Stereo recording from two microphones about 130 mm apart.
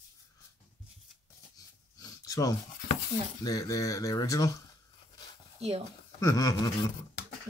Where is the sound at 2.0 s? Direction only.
25° left (ahead or behind).